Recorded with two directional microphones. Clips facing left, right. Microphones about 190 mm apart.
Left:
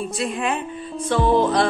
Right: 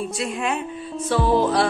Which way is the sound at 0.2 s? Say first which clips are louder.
Left 2 dB; centre (ahead or behind).